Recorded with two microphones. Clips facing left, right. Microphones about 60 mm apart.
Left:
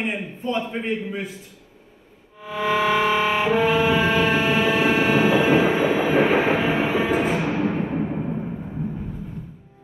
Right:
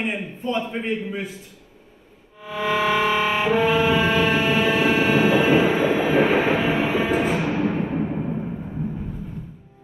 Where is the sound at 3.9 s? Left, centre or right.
Left.